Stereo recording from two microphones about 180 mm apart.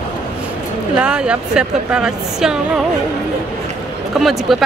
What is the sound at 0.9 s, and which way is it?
A woman's voice, 5° right (ahead or behind).